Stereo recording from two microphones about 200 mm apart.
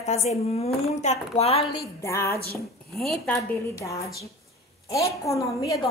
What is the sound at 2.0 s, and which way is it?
A woman's voice, 15° left (ahead or behind).